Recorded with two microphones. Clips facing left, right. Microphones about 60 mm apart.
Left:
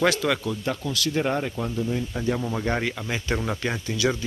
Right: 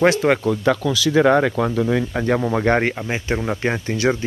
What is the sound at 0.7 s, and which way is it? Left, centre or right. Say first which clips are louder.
Speech: right 9 dB; right.